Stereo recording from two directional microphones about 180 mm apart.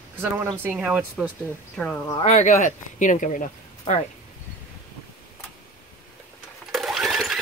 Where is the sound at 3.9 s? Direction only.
35° left (ahead or behind).